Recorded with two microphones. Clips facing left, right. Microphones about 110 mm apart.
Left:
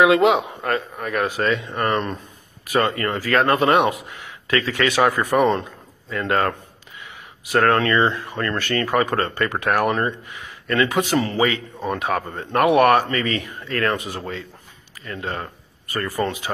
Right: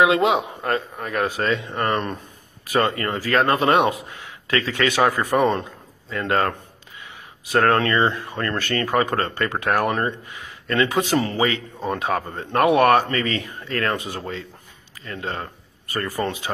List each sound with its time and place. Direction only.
0.0 s a man's voice: 25° right (ahead or behind)
5.6 s a sound: 25° right (ahead or behind)
7.5 s a man's voice: 30° right (ahead or behind)